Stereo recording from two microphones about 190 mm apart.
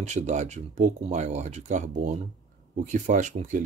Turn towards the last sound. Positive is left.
turn(degrees=-40)  # may be behind; listen again after turning